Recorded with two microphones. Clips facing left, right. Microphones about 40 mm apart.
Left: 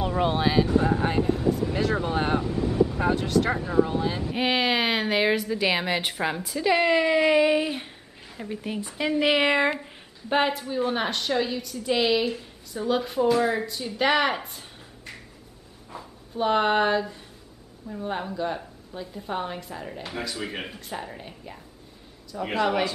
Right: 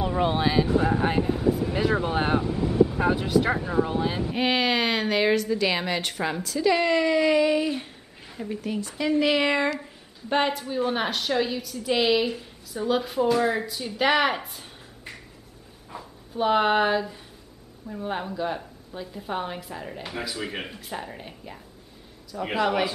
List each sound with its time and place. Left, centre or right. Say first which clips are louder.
0.1 s speech: left 1 dB; centre
4.4 s a woman's voice: even; centre; by 9.8 s left
10.3 s a woman's voice: even; centre